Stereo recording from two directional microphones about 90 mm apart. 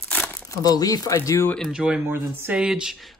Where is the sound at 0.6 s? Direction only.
45° left (ahead or behind).